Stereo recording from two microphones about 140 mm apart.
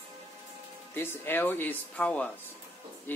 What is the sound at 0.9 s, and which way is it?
Speech, 15° left (ahead or behind).